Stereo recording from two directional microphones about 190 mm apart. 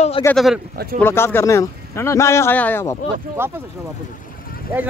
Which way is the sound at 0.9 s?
10° left (ahead or behind).